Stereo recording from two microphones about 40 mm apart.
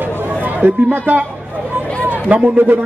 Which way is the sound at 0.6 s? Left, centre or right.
Right.